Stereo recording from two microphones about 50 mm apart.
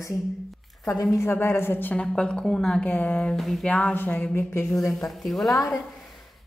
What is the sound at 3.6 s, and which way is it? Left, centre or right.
Speech, left.